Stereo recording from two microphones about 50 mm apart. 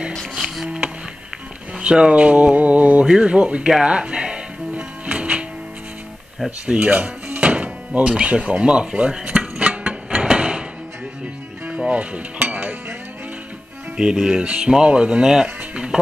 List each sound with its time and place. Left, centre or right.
0.1 s music: centre
1.8 s speech: right
3.8 s music: centre
6.6 s speech: right
9.6 s a sound: right
11.9 s cutlery: right
13.9 s speech: centre